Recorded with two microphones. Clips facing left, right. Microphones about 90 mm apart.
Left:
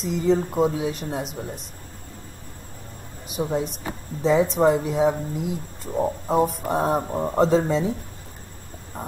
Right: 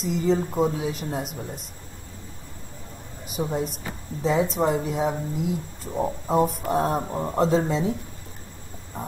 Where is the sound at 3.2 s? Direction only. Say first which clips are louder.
Left 2 dB; centre (ahead or behind).